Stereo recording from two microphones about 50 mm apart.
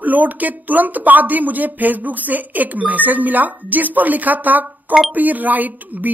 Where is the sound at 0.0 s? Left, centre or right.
Right.